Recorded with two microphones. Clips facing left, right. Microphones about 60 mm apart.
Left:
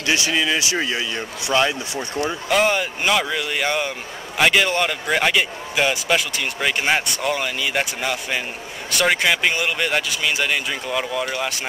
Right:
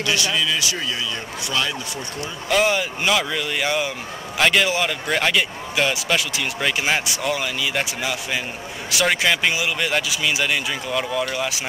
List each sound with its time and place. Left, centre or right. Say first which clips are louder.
0.0 s speech: left 1 dB; left
2.5 s a man's voice: even; centre